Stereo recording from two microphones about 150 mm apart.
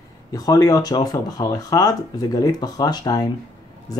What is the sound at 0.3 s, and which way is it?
Speech, 25° left (ahead or behind).